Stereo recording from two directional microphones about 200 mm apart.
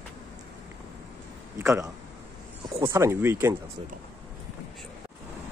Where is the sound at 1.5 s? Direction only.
15° right (ahead or behind).